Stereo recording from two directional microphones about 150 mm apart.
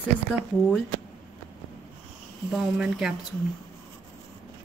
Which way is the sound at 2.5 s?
5° right (ahead or behind).